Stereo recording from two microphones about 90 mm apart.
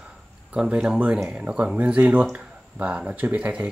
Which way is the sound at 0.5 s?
10° right (ahead or behind).